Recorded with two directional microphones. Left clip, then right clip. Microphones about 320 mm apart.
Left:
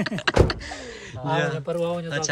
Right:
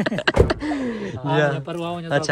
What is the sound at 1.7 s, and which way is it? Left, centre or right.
Speech, centre.